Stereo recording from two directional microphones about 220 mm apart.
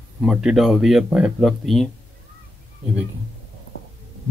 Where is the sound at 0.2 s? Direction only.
5° right (ahead or behind).